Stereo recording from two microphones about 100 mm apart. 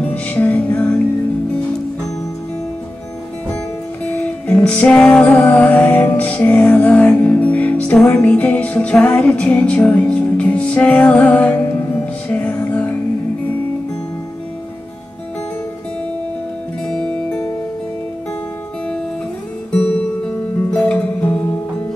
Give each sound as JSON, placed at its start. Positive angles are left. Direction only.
{"t": 0.0, "sound": "music", "side_deg": 15}
{"t": 3.5, "sound": "music", "side_deg": 15}
{"t": 16.8, "sound": "music", "side_deg": 10}
{"t": 19.7, "sound": "music", "side_deg": 15}